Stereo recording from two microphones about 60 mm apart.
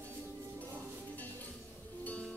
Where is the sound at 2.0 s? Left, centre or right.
Left.